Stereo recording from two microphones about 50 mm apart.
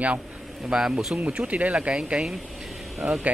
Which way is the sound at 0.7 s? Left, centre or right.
Centre.